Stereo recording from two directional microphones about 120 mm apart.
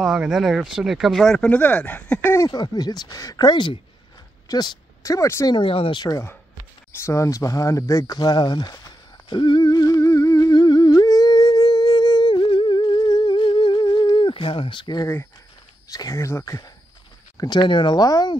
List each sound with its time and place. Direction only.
0.0 s speech: 5° right (ahead or behind)
2.3 s speech: 30° left (ahead or behind)
5.5 s speech: 45° left (ahead or behind)
7.0 s speech: 25° left (ahead or behind); by 8.7 s 40° left (ahead or behind)
8.7 s humming: 35° left (ahead or behind)
15.9 s speech: 30° left (ahead or behind)
17.4 s speech: 35° left (ahead or behind)